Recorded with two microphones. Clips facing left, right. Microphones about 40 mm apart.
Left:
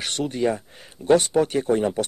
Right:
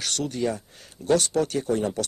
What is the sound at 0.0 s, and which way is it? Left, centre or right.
Speech, left.